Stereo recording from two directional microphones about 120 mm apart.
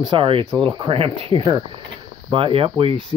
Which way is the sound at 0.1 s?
45° right (ahead or behind).